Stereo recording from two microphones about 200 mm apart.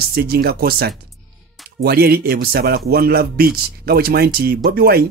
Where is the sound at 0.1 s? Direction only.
50° right (ahead or behind).